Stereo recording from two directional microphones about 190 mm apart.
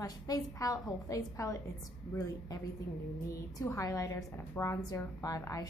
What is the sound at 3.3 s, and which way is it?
A woman's voice, 15° left (ahead or behind).